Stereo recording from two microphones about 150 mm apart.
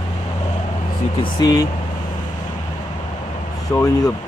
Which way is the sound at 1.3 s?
25° left (ahead or behind).